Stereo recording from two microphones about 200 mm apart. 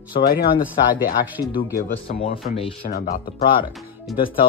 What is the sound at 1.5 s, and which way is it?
Speech, 45° left (ahead or behind).